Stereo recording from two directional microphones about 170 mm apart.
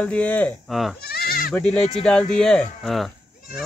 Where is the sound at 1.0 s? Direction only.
65° left (ahead or behind).